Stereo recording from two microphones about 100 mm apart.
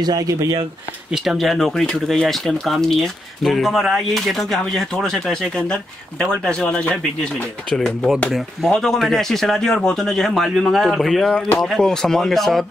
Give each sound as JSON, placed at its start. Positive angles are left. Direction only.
{"t": 0.0, "sound": "speech", "side_deg": -40}
{"t": 1.1, "sound": "speech", "side_deg": -5}